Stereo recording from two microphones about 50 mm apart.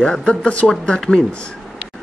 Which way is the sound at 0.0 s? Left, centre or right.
Centre.